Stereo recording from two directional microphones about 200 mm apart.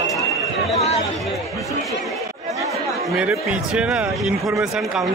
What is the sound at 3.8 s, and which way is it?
Speech, 5° right (ahead or behind).